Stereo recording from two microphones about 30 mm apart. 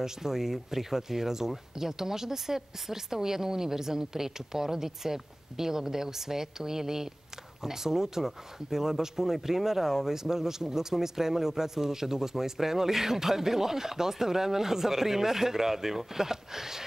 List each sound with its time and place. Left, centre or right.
0.0 s speech: centre